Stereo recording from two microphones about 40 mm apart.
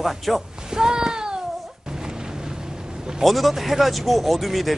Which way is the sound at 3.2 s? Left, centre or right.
Centre.